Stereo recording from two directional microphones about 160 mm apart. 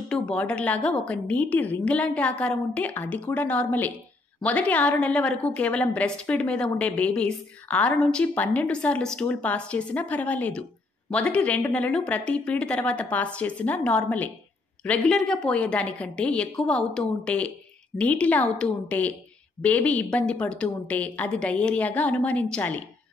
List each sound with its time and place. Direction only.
0.1 s a woman's voice: 5° left (ahead or behind)